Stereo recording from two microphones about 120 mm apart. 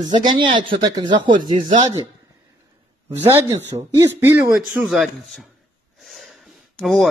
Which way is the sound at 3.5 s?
35° right (ahead or behind).